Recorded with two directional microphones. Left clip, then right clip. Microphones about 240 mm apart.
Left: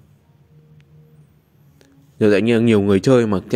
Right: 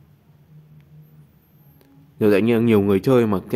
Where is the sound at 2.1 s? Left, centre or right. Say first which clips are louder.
Left 2 dB; centre.